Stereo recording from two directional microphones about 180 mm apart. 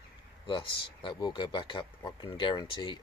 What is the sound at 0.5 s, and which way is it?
Speech, 25° left (ahead or behind).